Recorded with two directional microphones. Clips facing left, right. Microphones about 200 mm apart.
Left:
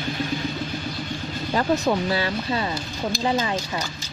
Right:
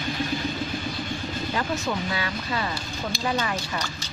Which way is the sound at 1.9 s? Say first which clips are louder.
Left 6 dB; 30° left (ahead or behind).